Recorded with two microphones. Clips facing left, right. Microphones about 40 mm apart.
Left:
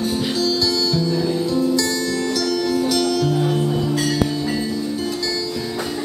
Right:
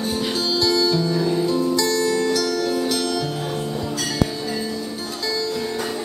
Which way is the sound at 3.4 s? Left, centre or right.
Left.